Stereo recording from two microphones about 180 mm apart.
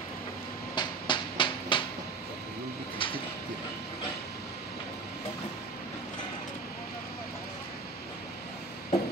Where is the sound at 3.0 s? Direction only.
30° left (ahead or behind).